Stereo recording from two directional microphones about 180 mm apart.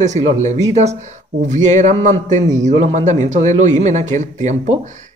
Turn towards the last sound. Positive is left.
turn(degrees=-40)  # may be behind; listen again after turning